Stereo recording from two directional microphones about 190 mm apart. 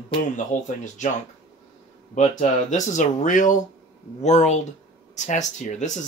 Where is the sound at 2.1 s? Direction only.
35° left (ahead or behind).